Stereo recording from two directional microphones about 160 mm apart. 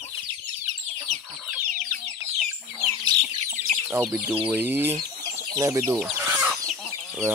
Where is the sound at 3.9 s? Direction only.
10° right (ahead or behind).